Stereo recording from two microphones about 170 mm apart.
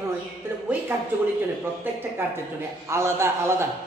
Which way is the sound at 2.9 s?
15° right (ahead or behind).